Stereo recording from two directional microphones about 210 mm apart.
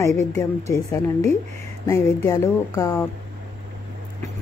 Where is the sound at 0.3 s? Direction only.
15° left (ahead or behind).